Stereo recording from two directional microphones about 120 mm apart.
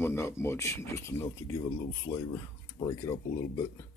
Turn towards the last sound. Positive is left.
turn(degrees=30)  # may be behind; listen again after turning